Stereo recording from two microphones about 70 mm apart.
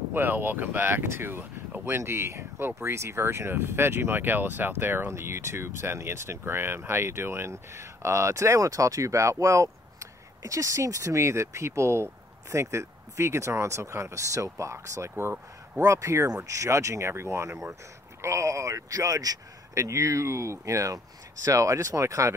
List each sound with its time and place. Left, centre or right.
0.1 s speech: right